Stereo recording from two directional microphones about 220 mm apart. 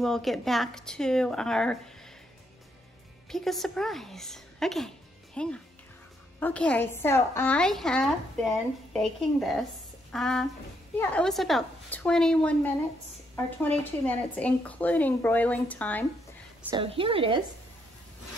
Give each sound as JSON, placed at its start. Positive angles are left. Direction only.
{"t": 0.0, "sound": "a woman's voice", "side_deg": 0}
{"t": 3.3, "sound": "a woman's voice", "side_deg": 0}
{"t": 16.7, "sound": "a woman's voice", "side_deg": -25}